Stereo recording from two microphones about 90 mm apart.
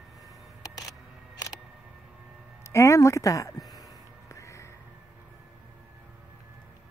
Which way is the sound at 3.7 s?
40° left (ahead or behind).